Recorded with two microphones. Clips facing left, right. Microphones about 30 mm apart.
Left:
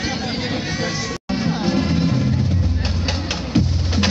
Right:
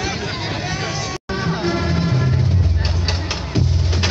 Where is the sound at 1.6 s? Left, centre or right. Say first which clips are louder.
Left 2 dB; right.